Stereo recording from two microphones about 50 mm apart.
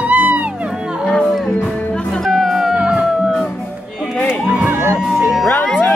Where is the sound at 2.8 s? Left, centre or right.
Right.